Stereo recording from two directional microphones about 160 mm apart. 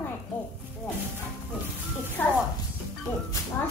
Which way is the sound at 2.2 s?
10° left (ahead or behind).